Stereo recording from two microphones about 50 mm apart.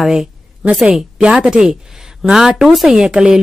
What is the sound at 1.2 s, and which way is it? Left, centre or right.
Speech, centre.